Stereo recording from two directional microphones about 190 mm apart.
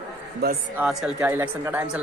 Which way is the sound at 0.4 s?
55° right (ahead or behind).